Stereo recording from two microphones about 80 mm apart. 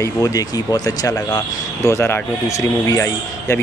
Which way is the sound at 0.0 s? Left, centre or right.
Left.